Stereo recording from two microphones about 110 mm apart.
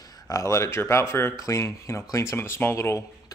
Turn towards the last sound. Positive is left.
turn(degrees=25)  # may be behind; listen again after turning